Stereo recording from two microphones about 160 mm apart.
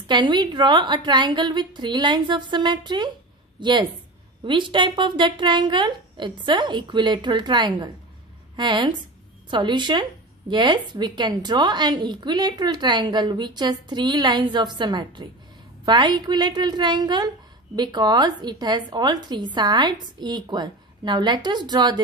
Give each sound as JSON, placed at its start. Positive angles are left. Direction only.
{"t": 0.0, "sound": "a woman's voice", "side_deg": -30}